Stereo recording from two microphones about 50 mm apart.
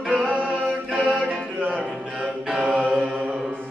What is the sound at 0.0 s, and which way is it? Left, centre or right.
Music, centre.